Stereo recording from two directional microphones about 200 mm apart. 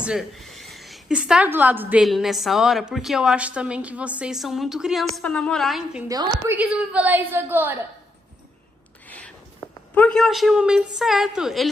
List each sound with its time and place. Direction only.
0.0 s a woman's voice: centre (ahead or behind)
6.0 s a woman's voice: 20° right (ahead or behind)
6.5 s a woman's voice: 5° right (ahead or behind)
9.0 s a sound: 10° left (ahead or behind)
9.9 s a woman's voice: 5° left (ahead or behind)